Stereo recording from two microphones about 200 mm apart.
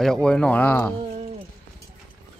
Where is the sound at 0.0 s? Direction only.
5° left (ahead or behind).